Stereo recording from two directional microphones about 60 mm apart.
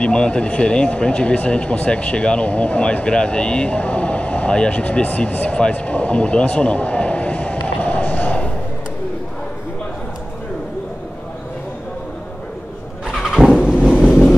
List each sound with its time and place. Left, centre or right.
0.0 s speech: centre
13.2 s vehicle: centre